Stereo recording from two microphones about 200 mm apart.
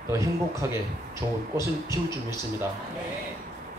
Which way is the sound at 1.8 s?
20° left (ahead or behind).